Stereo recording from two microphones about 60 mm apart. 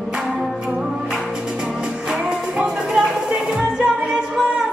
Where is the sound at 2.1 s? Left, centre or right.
Centre.